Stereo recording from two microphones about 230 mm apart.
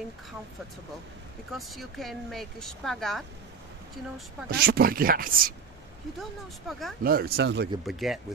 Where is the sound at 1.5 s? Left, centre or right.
Centre.